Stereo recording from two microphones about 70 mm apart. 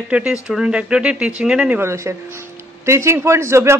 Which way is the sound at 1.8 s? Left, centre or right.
Right.